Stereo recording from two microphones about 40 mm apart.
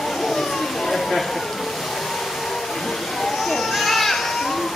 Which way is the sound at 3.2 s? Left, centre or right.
Centre.